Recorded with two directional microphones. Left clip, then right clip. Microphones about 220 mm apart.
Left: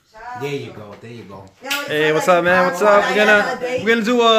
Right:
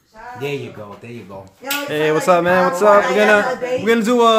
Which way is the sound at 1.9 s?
10° right (ahead or behind).